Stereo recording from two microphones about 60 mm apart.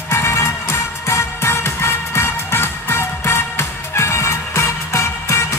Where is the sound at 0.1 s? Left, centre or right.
Left.